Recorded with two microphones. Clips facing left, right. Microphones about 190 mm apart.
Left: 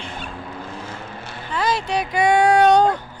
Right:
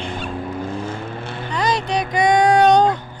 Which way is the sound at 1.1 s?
55° right (ahead or behind).